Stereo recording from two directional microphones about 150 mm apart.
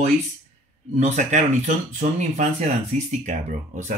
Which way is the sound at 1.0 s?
50° right (ahead or behind).